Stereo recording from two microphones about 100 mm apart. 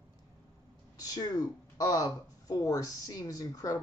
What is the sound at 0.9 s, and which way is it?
A man's voice, 40° left (ahead or behind).